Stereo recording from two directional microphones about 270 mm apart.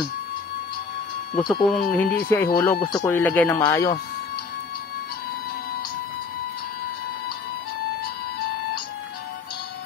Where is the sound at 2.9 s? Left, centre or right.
Centre.